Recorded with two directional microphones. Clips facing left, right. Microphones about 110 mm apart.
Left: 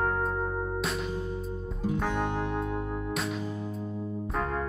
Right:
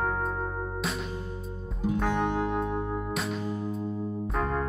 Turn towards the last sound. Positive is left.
turn(degrees=0)  # may be behind; listen again after turning